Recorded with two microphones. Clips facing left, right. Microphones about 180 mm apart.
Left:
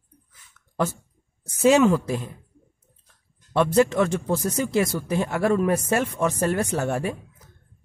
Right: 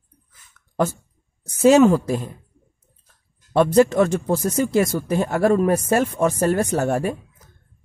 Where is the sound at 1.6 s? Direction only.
40° right (ahead or behind).